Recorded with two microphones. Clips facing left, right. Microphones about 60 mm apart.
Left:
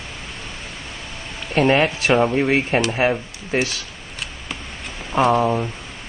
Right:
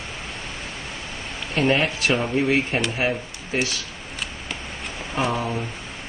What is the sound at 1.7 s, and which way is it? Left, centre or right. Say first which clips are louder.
Speech: left 4 dB; left.